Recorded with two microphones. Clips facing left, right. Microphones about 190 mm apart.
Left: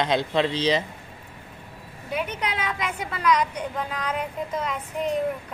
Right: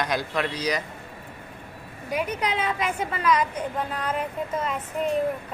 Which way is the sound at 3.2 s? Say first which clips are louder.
Left 1 dB; 5° right (ahead or behind).